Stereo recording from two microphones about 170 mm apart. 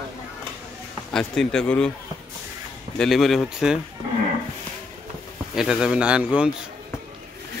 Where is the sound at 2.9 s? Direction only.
Centre (ahead or behind).